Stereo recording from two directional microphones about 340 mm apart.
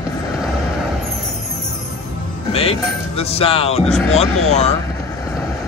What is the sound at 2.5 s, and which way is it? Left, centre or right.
Music, centre.